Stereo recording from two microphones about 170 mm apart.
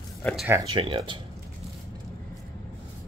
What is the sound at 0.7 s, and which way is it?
Speech, 30° right (ahead or behind).